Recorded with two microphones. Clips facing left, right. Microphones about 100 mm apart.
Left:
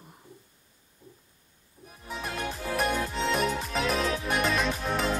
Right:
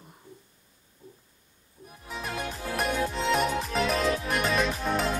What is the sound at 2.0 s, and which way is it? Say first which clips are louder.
Music: even; centre (ahead or behind).